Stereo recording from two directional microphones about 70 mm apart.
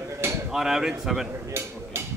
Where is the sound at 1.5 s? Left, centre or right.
Right.